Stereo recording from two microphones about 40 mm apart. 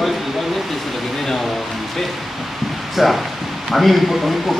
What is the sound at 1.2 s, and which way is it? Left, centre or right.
Speech, centre.